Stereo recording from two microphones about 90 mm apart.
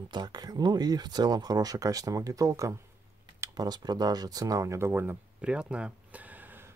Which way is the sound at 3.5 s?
50° right (ahead or behind).